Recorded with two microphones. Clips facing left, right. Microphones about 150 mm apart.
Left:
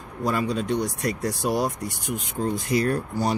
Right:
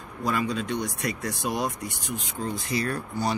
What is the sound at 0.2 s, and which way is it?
Speech, 35° left (ahead or behind).